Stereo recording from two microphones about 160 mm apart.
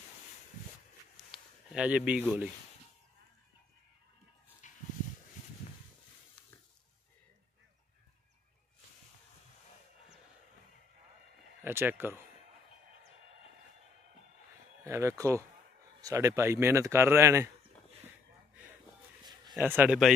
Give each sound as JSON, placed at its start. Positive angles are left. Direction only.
{"t": 1.1, "sound": "a sound", "side_deg": -5}
{"t": 4.6, "sound": "dog", "side_deg": 55}
{"t": 11.6, "sound": "speech", "side_deg": -15}
{"t": 14.9, "sound": "speech", "side_deg": -20}
{"t": 19.6, "sound": "speech", "side_deg": -10}